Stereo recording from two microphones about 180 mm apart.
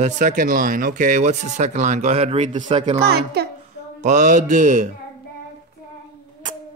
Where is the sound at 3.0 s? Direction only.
65° right (ahead or behind).